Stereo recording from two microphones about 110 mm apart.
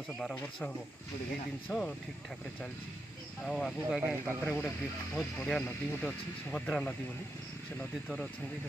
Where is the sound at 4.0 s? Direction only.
20° right (ahead or behind).